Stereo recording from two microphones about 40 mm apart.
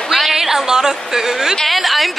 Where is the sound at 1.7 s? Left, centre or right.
Centre.